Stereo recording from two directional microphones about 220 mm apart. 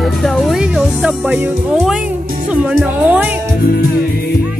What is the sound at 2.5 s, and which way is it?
Speech, 5° right (ahead or behind).